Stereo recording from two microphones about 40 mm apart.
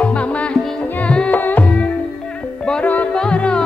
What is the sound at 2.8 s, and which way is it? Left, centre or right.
Music, left.